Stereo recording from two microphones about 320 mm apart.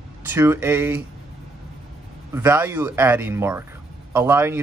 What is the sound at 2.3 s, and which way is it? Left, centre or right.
A man's voice, centre.